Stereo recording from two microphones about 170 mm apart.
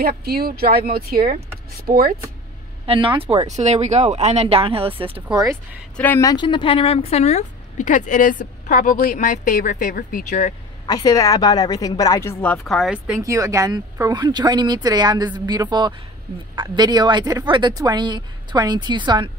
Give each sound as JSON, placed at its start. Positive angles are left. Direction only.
{"t": 0.0, "sound": "speech", "side_deg": -65}
{"t": 2.9, "sound": "speech", "side_deg": -30}
{"t": 5.4, "sound": "speech", "side_deg": -15}
{"t": 5.9, "sound": "speech", "side_deg": 10}
{"t": 6.3, "sound": "a woman's voice", "side_deg": 30}
{"t": 10.9, "sound": "a woman's voice", "side_deg": 20}
{"t": 12.6, "sound": "speech", "side_deg": 0}
{"t": 13.2, "sound": "a woman's voice", "side_deg": -20}